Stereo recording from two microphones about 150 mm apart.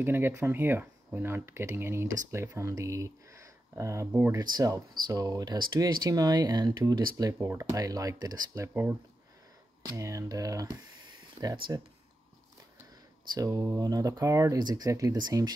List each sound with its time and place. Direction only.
0.0 s speech: 15° right (ahead or behind)
9.8 s speech: 20° right (ahead or behind)
13.3 s speech: 25° right (ahead or behind)